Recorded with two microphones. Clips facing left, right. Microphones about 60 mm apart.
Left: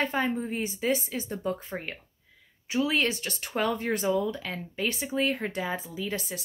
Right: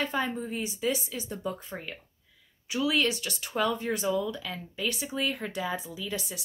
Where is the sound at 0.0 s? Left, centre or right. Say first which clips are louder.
Left 2 dB; left.